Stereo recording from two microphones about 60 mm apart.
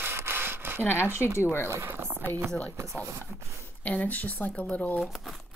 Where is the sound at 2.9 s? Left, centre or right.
Right.